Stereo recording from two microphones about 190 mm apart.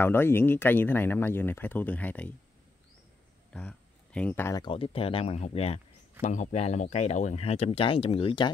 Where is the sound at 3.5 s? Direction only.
5° left (ahead or behind).